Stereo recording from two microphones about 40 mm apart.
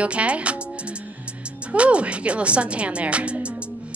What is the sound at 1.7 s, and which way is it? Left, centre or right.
Speech, right.